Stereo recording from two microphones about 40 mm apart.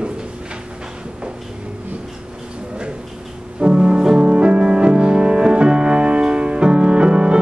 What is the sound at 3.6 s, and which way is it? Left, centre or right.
Music, right.